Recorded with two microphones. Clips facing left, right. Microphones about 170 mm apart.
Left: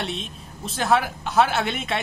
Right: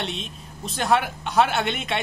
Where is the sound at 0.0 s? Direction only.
Centre (ahead or behind).